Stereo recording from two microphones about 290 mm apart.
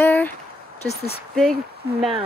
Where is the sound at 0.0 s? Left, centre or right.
Centre.